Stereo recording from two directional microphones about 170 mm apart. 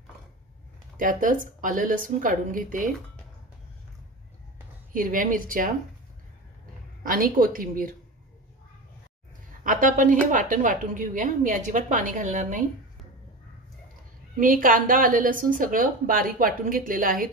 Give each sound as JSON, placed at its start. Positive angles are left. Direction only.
{"t": 0.9, "sound": "a woman's voice", "side_deg": -50}
{"t": 4.9, "sound": "a woman's voice", "side_deg": -55}
{"t": 7.0, "sound": "a woman's voice", "side_deg": -55}
{"t": 9.6, "sound": "a woman's voice", "side_deg": -50}
{"t": 14.4, "sound": "a woman's voice", "side_deg": -55}